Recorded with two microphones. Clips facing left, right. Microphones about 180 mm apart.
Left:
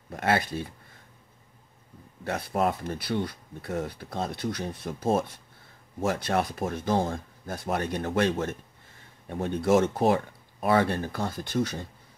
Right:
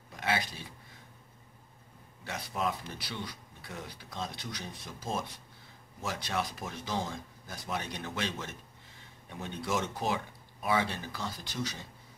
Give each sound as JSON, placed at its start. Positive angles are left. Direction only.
{"t": 0.1, "sound": "speech", "side_deg": 55}
{"t": 2.2, "sound": "speech", "side_deg": 55}